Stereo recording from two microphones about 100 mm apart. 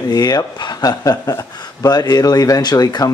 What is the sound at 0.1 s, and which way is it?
Speech, 40° left (ahead or behind).